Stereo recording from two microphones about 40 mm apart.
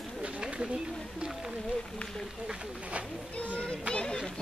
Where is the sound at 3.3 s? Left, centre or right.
Left.